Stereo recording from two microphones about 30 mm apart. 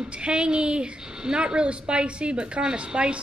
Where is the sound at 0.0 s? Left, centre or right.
Right.